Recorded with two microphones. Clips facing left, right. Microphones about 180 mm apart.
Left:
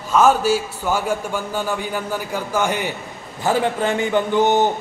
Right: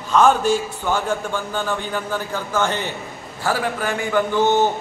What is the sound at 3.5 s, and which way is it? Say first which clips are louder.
A man's voice: left 3 dB; 25° left (ahead or behind).